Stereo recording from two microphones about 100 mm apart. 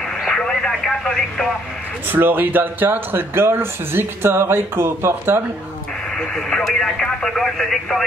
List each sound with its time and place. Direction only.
0.2 s radio: 5° left (ahead or behind)
2.0 s speech: 20° right (ahead or behind)
6.1 s speech: 5° left (ahead or behind)